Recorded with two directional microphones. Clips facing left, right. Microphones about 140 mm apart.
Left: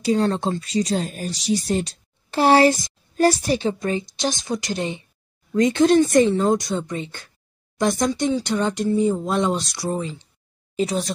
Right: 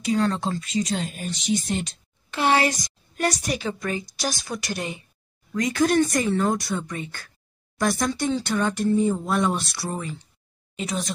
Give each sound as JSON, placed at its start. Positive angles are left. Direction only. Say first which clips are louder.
{"t": 0.0, "sound": "speech", "louder": "left 3 dB", "side_deg": 30}
{"t": 10.8, "sound": "speech", "louder": "left 6 dB", "side_deg": 35}